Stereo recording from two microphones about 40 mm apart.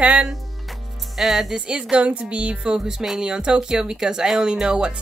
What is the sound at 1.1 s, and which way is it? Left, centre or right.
Speech, centre.